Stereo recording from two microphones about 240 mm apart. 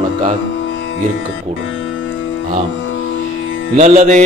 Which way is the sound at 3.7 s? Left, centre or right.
Right.